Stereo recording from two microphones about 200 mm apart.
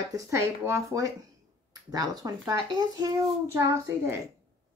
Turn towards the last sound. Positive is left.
turn(degrees=-15)  # may be behind; listen again after turning